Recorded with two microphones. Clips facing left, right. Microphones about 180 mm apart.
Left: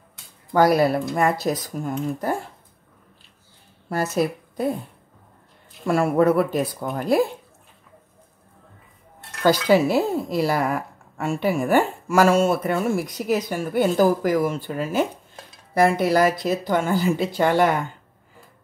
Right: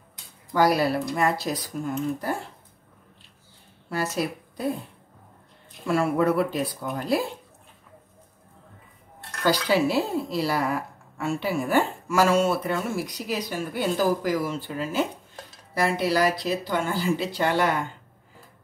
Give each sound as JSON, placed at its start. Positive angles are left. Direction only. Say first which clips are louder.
{"t": 0.5, "sound": "speech", "louder": "left 4 dB", "side_deg": 50}
{"t": 3.9, "sound": "speech", "louder": "left 5 dB", "side_deg": 45}
{"t": 5.9, "sound": "speech", "louder": "left 4 dB", "side_deg": 45}
{"t": 9.4, "sound": "speech", "louder": "left 5 dB", "side_deg": 50}